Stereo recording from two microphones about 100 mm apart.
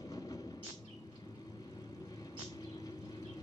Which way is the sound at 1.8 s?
35° left (ahead or behind).